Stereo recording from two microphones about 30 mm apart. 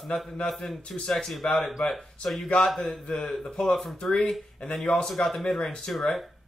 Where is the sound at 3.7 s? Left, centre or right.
Centre.